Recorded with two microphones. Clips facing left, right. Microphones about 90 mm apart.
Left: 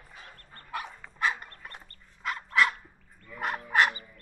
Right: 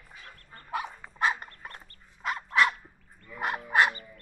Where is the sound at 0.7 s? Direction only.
15° right (ahead or behind).